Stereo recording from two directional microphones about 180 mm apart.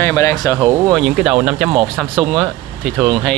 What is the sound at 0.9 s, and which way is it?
Speech, centre (ahead or behind).